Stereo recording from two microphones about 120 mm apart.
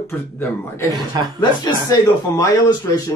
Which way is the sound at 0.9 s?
35° right (ahead or behind).